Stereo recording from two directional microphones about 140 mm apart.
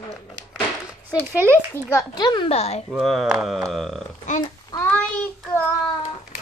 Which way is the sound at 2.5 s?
50° left (ahead or behind).